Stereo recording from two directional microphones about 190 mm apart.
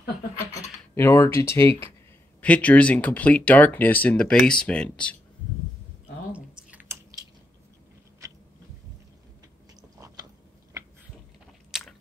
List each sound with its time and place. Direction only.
0.6 s speech: 15° left (ahead or behind)
6.7 s chewing: 10° right (ahead or behind)
9.8 s chewing: 20° right (ahead or behind)
11.7 s biting: 5° right (ahead or behind)